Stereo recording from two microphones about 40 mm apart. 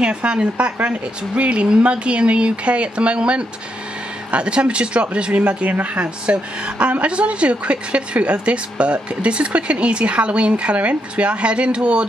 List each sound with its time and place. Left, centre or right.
0.0 s a woman's voice: right